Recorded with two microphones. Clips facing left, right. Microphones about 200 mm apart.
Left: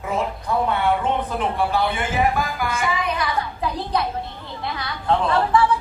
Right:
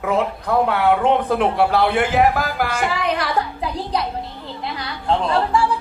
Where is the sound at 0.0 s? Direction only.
65° right (ahead or behind).